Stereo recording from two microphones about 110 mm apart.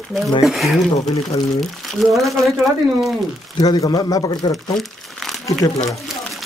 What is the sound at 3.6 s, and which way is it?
Speech, 35° left (ahead or behind).